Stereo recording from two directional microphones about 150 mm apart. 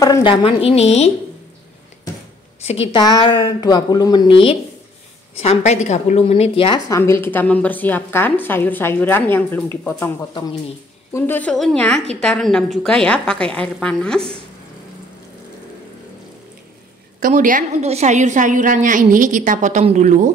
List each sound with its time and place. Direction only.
0.2 s a woman's voice: 35° left (ahead or behind)
2.6 s a woman's voice: 45° left (ahead or behind)
2.9 s a woman's voice: 30° left (ahead or behind)
5.4 s a woman's voice: 45° left (ahead or behind)
6.9 s a woman's voice: 15° left (ahead or behind)
11.1 s a woman's voice: 15° left (ahead or behind)
17.2 s a woman's voice: 60° right (ahead or behind)
17.8 s a woman's voice: 50° right (ahead or behind)